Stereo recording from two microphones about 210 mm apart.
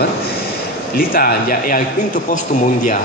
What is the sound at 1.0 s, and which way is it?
Speech, 45° left (ahead or behind).